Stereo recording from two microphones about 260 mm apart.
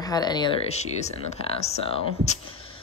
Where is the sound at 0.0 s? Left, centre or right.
Centre.